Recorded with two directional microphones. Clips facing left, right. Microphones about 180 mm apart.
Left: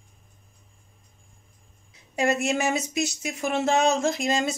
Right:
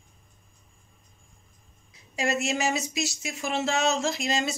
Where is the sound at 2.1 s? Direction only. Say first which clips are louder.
Left 4 dB; 55° left (ahead or behind).